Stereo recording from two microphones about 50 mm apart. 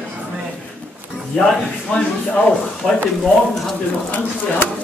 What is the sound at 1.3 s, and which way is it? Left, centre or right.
A man's voice, centre.